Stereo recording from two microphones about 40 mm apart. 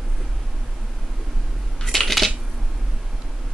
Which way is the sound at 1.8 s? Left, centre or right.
Centre.